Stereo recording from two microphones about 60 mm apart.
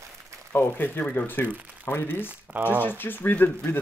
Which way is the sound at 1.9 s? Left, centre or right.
Left.